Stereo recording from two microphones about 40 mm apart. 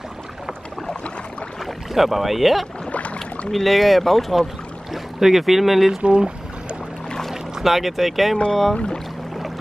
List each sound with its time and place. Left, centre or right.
2.0 s speech: centre
6.0 s speech: right
7.2 s speech: centre
8.7 s speech: left